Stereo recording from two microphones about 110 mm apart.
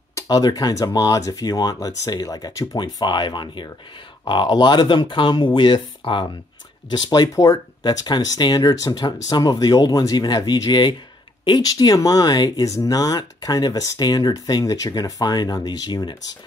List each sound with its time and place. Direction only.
0.1 s speech: 35° left (ahead or behind)